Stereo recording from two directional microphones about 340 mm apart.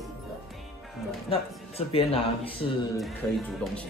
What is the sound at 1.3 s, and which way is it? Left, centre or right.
Speech, centre.